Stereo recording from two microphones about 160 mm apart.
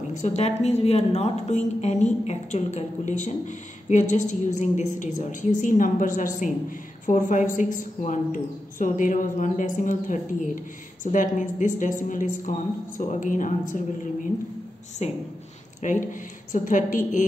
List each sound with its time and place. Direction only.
0.2 s a woman's voice: 45° left (ahead or behind)
15.0 s speech: 40° left (ahead or behind)
15.8 s a woman's voice: 50° left (ahead or behind)